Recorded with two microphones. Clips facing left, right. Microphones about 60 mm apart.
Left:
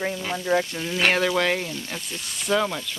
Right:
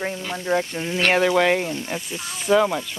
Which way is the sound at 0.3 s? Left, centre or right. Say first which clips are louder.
Even; centre.